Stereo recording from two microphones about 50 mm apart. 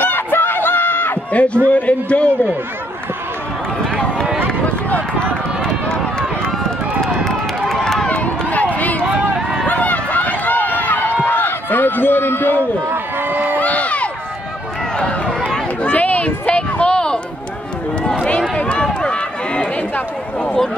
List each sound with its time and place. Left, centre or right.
0.0 s a sound: left
1.3 s a man's voice: left
3.9 s run: centre
4.5 s run: left
7.0 s run: centre
8.1 s run: left
12.9 s a sound: right
13.6 s a sound: left
15.0 s run: centre
15.9 s a sound: left
18.6 s run: left
20.3 s speech: centre